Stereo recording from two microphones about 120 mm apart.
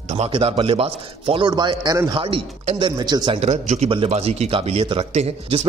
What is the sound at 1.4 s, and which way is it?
A man's voice, 40° right (ahead or behind).